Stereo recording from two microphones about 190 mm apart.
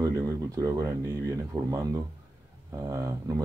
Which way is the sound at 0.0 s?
20° right (ahead or behind).